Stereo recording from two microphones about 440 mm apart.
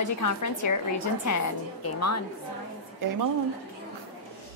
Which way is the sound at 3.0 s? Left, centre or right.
Right.